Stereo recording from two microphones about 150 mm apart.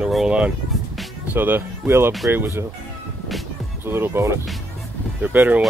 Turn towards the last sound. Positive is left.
turn(degrees=-10)  # may be behind; listen again after turning